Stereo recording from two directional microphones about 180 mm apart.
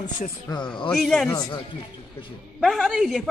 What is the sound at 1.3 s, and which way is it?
Speech, 20° left (ahead or behind).